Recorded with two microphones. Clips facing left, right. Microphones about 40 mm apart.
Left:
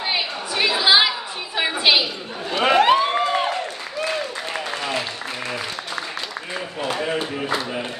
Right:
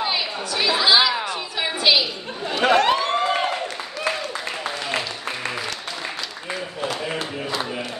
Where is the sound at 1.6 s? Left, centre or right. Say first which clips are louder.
Left 1 dB; centre.